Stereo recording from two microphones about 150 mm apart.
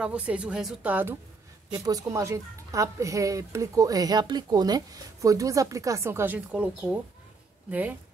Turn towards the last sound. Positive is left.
turn(degrees=-10)  # may be behind; listen again after turning